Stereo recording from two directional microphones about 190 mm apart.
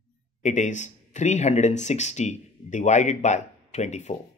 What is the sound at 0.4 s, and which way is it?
Speech, 40° left (ahead or behind).